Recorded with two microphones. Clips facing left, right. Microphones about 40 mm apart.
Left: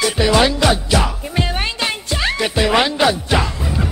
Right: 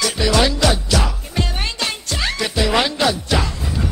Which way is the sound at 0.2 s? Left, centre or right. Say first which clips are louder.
Left 2 dB; centre.